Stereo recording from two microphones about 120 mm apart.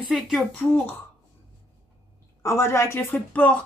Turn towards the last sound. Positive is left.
turn(degrees=10)  # may be behind; listen again after turning